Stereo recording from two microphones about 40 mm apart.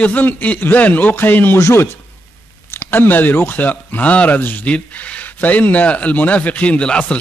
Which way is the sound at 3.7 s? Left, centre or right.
Left.